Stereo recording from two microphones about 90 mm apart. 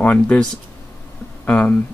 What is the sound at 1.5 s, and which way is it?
Speech, 20° left (ahead or behind).